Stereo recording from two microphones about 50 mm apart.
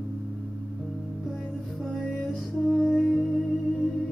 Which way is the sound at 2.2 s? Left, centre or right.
Centre.